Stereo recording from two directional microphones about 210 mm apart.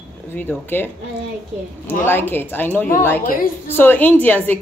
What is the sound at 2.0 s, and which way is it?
A woman's voice, 10° left (ahead or behind).